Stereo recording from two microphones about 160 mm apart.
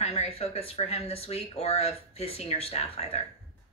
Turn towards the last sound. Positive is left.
turn(degrees=40)  # may be behind; listen again after turning